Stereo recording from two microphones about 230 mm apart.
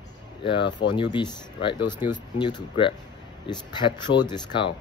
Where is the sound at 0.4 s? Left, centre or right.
Left.